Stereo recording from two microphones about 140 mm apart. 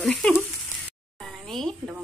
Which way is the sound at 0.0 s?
5° left (ahead or behind).